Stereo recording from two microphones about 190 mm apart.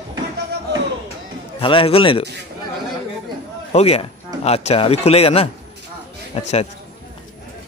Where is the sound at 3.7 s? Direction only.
35° left (ahead or behind).